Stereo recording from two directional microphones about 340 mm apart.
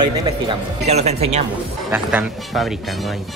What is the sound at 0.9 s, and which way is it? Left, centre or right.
Speech, centre.